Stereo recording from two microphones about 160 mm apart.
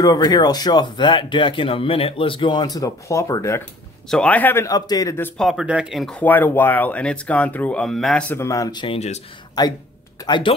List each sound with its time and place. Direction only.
0.0 s speech: 25° left (ahead or behind)
4.1 s speech: 10° left (ahead or behind)
5.4 s speech: centre (ahead or behind); by 8.8 s 20° left (ahead or behind)
8.8 s speech: 40° left (ahead or behind)
9.6 s speech: 25° left (ahead or behind)